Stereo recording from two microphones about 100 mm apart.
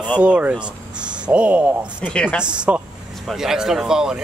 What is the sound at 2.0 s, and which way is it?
Speech, 15° left (ahead or behind).